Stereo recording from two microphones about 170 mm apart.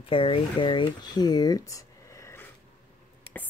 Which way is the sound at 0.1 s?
30° left (ahead or behind).